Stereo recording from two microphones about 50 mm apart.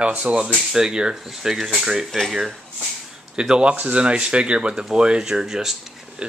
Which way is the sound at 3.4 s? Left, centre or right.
Centre.